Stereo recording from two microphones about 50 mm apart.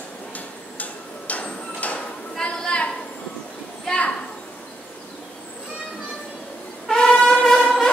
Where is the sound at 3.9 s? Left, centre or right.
Centre.